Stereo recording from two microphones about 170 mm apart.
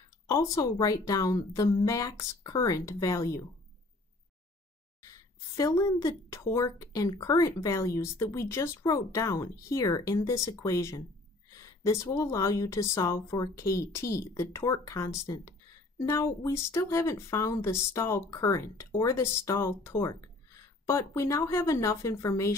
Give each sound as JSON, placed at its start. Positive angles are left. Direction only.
{"t": 0.3, "sound": "a woman's voice", "side_deg": 20}
{"t": 5.0, "sound": "a woman's voice", "side_deg": 20}